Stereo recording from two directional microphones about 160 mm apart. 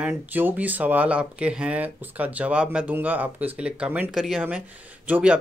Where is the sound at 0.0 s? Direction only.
10° right (ahead or behind).